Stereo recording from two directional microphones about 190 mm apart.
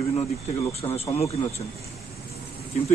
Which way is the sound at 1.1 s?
35° left (ahead or behind).